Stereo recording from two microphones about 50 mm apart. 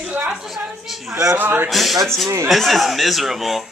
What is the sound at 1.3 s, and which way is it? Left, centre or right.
Speech, right.